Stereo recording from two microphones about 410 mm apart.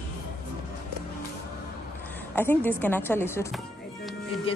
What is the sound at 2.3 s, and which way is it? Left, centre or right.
Speech, centre.